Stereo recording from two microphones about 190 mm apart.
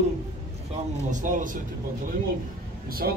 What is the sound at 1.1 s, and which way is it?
Speech, 40° right (ahead or behind).